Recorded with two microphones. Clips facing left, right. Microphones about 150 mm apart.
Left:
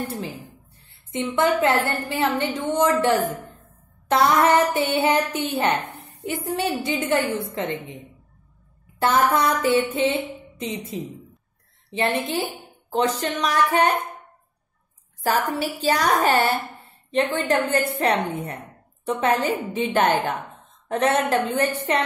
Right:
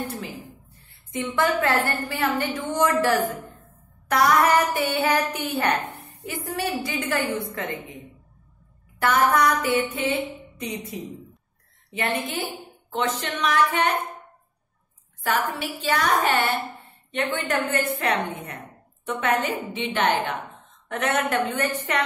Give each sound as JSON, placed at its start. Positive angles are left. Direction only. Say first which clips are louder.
{"t": 0.1, "sound": "a sound", "louder": "left 3 dB", "side_deg": 30}
{"t": 1.3, "sound": "a woman's voice", "louder": "left 3 dB", "side_deg": 20}
{"t": 9.0, "sound": "a woman's voice", "louder": "left 1 dB", "side_deg": 25}
{"t": 11.9, "sound": "a woman's voice", "louder": "left 4 dB", "side_deg": 30}
{"t": 15.2, "sound": "a woman's voice", "louder": "left 3 dB", "side_deg": 40}
{"t": 20.9, "sound": "a woman's voice", "louder": "left 4 dB", "side_deg": 30}